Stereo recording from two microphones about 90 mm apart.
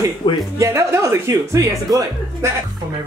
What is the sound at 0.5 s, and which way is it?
Speech, 35° right (ahead or behind).